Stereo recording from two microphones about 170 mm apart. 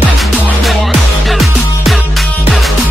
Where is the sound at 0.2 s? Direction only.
Centre (ahead or behind).